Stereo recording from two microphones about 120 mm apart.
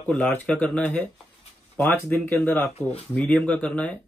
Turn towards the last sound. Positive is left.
turn(degrees=10)  # may be behind; listen again after turning